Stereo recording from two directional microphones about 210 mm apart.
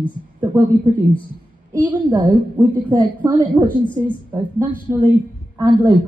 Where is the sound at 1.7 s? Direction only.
15° right (ahead or behind).